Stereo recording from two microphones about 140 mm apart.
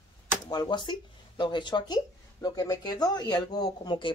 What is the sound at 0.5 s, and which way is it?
Speech, 30° left (ahead or behind).